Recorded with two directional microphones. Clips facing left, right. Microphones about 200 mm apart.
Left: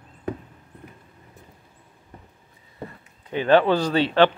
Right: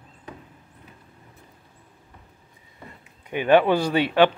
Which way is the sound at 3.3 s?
15° right (ahead or behind).